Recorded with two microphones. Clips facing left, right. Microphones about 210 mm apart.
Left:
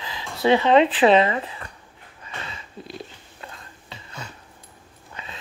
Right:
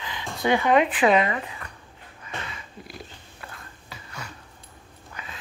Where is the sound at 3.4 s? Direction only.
25° left (ahead or behind).